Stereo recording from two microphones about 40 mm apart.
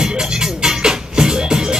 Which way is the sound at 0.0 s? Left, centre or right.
Centre.